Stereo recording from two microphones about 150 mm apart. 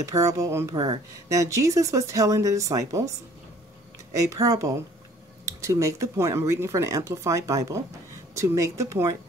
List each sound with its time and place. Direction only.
0.0 s speech: 20° right (ahead or behind)
0.7 s speech: 35° right (ahead or behind)
1.3 s speech: 20° right (ahead or behind)